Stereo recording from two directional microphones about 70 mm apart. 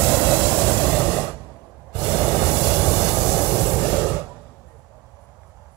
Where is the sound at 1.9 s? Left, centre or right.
Left.